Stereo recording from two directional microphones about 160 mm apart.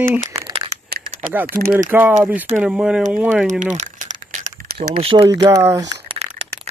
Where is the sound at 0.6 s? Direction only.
75° right (ahead or behind).